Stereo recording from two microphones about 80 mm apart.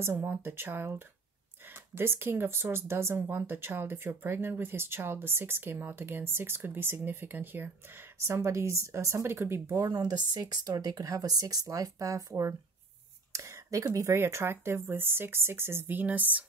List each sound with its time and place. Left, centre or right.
0.0 s speech: right
8.2 s speech: right
9.8 s speech: right